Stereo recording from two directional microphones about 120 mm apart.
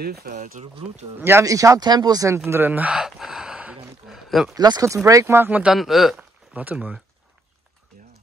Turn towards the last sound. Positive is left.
turn(degrees=-10)  # may be behind; listen again after turning